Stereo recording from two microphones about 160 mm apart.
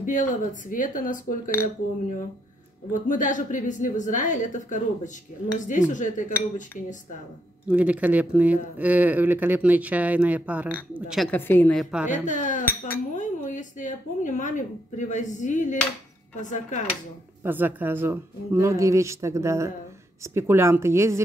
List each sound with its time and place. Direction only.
0.0 s speech: 55° left (ahead or behind)
2.9 s a woman's voice: 55° left (ahead or behind)
7.7 s speech: 10° right (ahead or behind)
11.2 s a woman's voice: 10° left (ahead or behind)
11.8 s a woman's voice: 5° right (ahead or behind)
12.1 s a woman's voice: 50° left (ahead or behind)
12.6 s a woman's voice: 15° left (ahead or behind)
13.1 s a woman's voice: 50° left (ahead or behind)
17.4 s speech: 10° right (ahead or behind)